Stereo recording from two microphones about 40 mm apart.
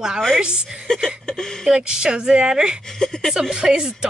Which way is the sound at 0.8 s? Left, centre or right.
Centre.